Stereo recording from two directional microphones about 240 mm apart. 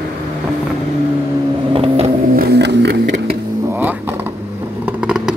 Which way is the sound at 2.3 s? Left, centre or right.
Right.